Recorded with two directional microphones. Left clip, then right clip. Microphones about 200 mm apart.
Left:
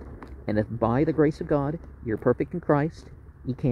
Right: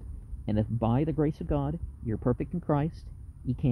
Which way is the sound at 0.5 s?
45° right (ahead or behind).